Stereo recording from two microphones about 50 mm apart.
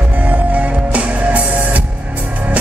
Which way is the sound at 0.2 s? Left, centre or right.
Right.